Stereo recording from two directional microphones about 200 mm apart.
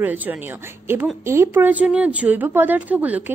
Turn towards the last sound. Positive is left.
turn(degrees=-10)  # may be behind; listen again after turning